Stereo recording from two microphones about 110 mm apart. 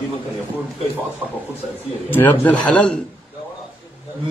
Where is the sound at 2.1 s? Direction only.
15° left (ahead or behind).